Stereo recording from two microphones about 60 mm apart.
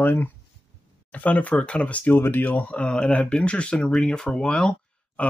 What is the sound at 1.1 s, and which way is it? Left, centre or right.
Speech, left.